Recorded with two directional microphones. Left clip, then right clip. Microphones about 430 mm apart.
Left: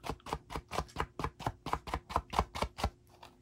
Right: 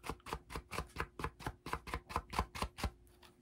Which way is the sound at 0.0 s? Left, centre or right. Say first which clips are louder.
Left 5 dB; centre.